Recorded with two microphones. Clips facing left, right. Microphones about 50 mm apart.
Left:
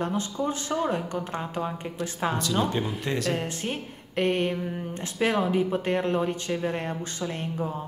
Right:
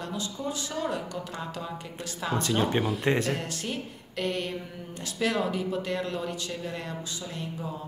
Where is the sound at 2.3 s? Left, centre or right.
Right.